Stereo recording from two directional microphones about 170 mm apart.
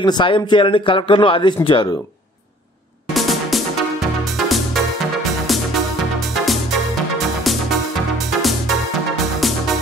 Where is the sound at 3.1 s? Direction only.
Centre (ahead or behind).